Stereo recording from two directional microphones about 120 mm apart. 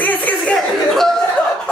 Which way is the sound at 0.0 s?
15° left (ahead or behind).